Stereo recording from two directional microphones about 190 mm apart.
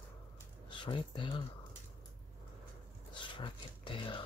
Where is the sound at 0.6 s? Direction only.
25° left (ahead or behind).